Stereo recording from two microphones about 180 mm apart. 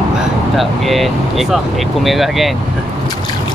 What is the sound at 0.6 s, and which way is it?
Speech, centre (ahead or behind).